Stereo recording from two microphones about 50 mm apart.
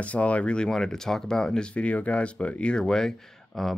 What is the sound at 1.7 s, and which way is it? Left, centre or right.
Speech, left.